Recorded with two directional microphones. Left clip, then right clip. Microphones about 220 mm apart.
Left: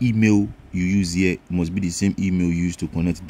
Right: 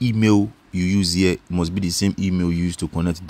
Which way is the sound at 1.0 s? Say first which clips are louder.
Right 3 dB; 55° right (ahead or behind).